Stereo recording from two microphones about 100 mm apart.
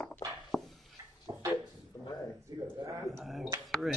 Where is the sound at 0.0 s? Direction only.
15° left (ahead or behind).